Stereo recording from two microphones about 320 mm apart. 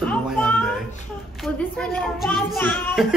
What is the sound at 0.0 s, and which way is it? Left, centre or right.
Music, centre.